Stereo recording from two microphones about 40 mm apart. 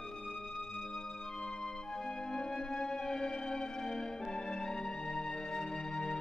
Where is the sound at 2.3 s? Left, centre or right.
Centre.